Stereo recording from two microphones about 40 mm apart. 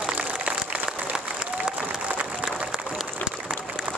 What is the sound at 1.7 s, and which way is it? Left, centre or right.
Applause, right.